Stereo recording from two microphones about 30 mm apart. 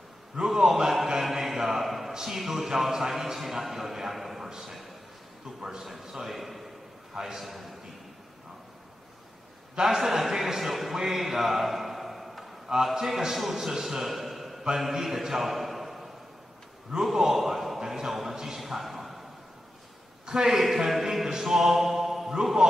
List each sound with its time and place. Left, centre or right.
0.5 s a sound: centre
2.1 s a man's voice: centre
5.6 s a man's voice: centre
5.9 s a man's voice: centre
7.2 s a man's voice: centre
9.8 s a man's voice: centre
11.0 s a sound: centre
12.9 s a man's voice: centre
15.5 s a sound: centre
17.0 s a man's voice: centre
18.6 s a sound: centre
20.2 s a man's voice: right
20.6 s a man's voice: centre